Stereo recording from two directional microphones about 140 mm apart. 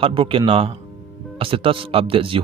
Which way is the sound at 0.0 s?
40° right (ahead or behind).